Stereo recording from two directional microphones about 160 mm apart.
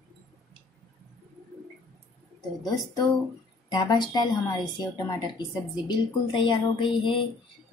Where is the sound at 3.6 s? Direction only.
25° left (ahead or behind).